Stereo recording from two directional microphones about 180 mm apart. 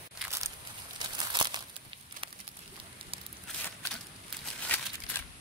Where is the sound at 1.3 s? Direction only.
25° right (ahead or behind).